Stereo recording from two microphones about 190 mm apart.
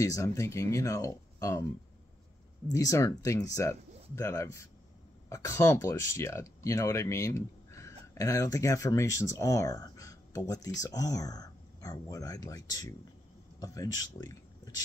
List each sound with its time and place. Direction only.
0.0 s speech: 15° left (ahead or behind)
2.7 s speech: 15° left (ahead or behind)